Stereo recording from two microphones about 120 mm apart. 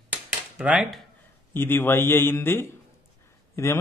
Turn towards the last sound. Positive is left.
turn(degrees=25)  # may be behind; listen again after turning